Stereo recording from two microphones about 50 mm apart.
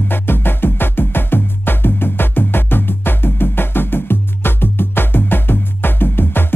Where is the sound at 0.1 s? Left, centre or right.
Left.